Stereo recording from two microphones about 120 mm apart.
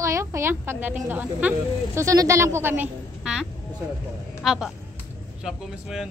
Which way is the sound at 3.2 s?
5° right (ahead or behind).